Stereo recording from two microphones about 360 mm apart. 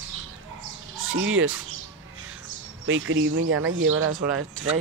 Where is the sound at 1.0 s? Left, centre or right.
Right.